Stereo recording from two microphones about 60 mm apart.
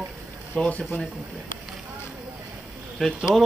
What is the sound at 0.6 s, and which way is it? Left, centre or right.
Speech, centre.